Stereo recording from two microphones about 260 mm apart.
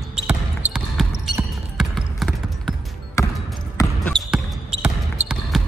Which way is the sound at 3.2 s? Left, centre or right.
Centre.